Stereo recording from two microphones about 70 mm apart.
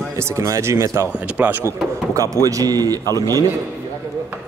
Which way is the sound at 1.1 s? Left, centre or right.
Centre.